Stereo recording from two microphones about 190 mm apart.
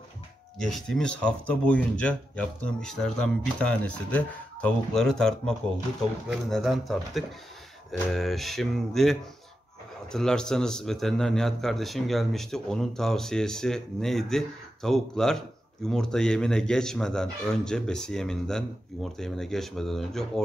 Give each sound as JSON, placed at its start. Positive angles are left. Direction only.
{"t": 0.6, "sound": "speech", "side_deg": 0}